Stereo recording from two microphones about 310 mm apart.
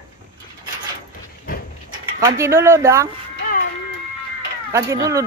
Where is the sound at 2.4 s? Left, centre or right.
Centre.